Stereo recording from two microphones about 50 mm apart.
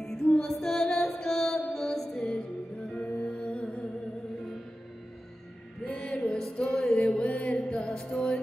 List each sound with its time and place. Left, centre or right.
0.0 s music: centre
2.1 s music: left
2.8 s music: centre
3.2 s music: left
5.9 s music: centre
7.0 s mantra: centre
7.6 s music: centre